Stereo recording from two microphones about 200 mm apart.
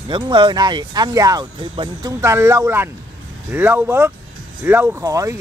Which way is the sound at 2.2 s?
15° right (ahead or behind).